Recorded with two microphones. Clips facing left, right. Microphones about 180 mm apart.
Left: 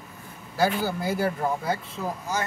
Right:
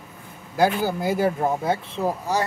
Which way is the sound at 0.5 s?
20° right (ahead or behind).